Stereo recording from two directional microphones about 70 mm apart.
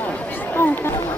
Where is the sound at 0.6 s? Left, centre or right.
Left.